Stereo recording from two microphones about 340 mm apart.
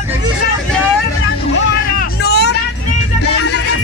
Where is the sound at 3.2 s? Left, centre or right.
Left.